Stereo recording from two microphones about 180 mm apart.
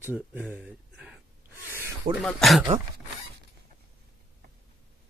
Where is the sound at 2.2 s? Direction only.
Centre (ahead or behind).